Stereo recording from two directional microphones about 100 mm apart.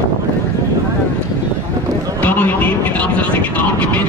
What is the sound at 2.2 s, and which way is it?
Vehicle, 15° left (ahead or behind).